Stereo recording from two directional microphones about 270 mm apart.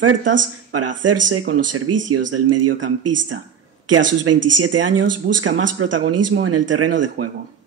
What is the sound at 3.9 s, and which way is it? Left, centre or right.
Speech, right.